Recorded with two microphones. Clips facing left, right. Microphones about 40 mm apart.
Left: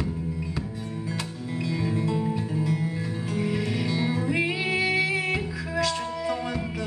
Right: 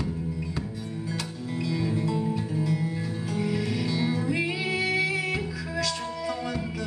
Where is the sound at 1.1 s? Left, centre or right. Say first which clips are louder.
Right 1 dB; centre.